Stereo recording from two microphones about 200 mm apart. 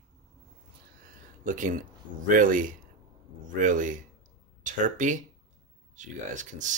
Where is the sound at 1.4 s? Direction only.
40° right (ahead or behind).